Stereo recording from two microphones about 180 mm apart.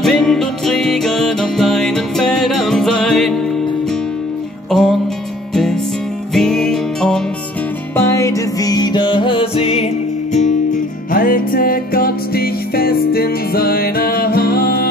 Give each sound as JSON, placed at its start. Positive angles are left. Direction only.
{"t": 0.0, "sound": "music", "side_deg": 0}
{"t": 4.6, "sound": "music", "side_deg": 0}
{"t": 7.9, "sound": "music", "side_deg": 15}
{"t": 10.3, "sound": "music", "side_deg": 45}